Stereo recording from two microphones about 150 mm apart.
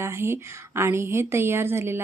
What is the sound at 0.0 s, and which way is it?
A woman's voice, 15° right (ahead or behind).